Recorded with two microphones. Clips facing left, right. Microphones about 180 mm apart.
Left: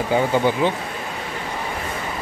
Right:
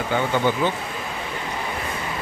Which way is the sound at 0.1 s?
30° left (ahead or behind).